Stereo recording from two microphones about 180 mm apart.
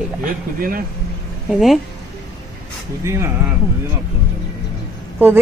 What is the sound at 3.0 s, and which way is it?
Speech, 15° right (ahead or behind).